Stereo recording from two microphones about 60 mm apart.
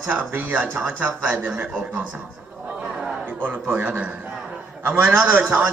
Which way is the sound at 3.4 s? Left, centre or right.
Right.